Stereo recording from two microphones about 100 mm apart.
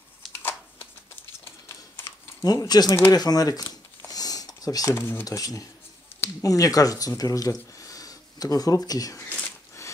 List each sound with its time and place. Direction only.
0.4 s shuffling cards: 20° left (ahead or behind)
2.4 s speech: 40° left (ahead or behind)
3.1 s a sound: 40° left (ahead or behind)
4.9 s speech: 20° left (ahead or behind)
5.2 s speech: 35° left (ahead or behind)
7.7 s a sound: 35° left (ahead or behind)